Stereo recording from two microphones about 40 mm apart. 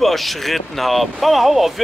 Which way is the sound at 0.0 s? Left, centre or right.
Centre.